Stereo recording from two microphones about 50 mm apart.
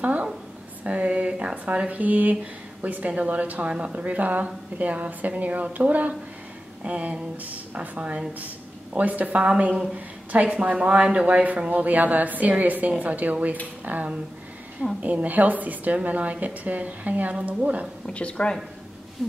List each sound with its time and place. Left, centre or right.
0.0 s a sound: right
0.8 s a woman's voice: right
4.0 s a woman's voice: right
18.0 s speech: left